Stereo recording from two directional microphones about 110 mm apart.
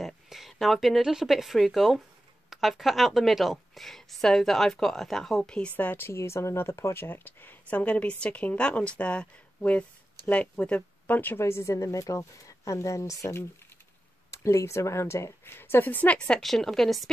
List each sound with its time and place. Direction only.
0.0 s a woman's voice: centre (ahead or behind)